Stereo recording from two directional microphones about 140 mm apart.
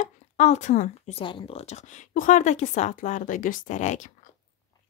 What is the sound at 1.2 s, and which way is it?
A woman's voice, 40° left (ahead or behind).